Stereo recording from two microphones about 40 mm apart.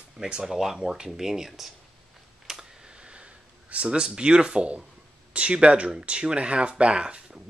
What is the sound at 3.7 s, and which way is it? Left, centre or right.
Speech, right.